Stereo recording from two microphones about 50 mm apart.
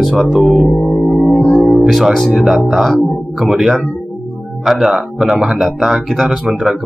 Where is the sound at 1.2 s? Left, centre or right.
Centre.